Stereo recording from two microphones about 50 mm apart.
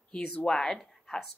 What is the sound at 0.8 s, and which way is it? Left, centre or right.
Speech, centre.